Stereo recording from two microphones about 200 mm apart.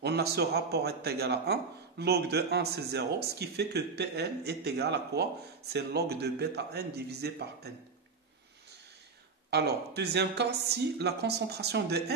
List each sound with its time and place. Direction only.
0.0 s a man's voice: 55° right (ahead or behind)
9.5 s a man's voice: 55° right (ahead or behind)